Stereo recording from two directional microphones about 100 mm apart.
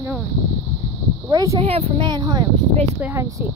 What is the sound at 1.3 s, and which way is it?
Speech, 35° right (ahead or behind).